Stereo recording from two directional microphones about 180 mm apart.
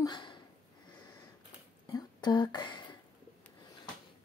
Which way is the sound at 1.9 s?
20° left (ahead or behind).